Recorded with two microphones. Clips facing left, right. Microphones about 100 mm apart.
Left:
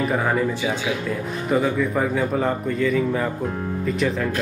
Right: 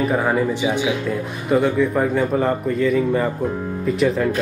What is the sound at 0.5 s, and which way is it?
Speech, 20° right (ahead or behind).